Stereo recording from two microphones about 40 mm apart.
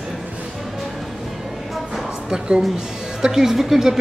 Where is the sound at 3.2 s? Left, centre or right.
Centre.